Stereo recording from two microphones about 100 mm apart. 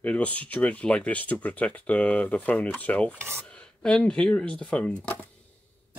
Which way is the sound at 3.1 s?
25° right (ahead or behind).